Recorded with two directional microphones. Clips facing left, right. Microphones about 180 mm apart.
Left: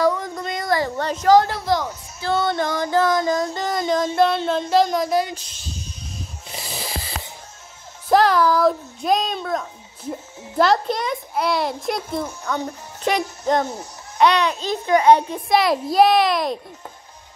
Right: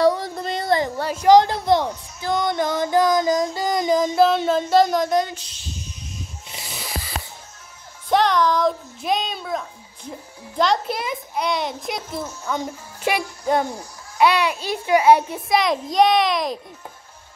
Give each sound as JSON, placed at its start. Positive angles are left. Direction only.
{"t": 0.0, "sound": "a sound", "side_deg": -30}
{"t": 0.9, "sound": "female singing", "side_deg": -10}
{"t": 6.1, "sound": "music", "side_deg": 35}
{"t": 8.1, "sound": "speech", "side_deg": 5}
{"t": 14.1, "sound": "female singing", "side_deg": -10}